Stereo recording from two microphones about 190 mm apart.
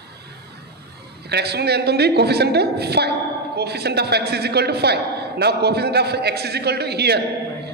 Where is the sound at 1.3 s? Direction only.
60° right (ahead or behind).